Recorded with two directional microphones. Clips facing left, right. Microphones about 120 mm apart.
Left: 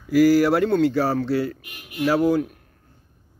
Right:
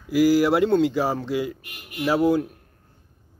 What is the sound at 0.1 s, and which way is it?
Speech, 15° right (ahead or behind).